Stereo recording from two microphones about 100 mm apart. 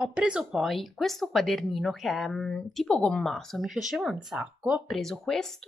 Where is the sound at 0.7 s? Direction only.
Centre (ahead or behind).